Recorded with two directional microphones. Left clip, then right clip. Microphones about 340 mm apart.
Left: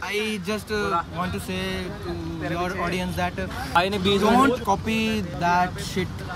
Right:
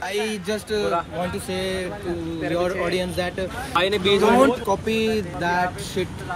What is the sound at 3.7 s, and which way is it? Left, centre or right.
Speech, left.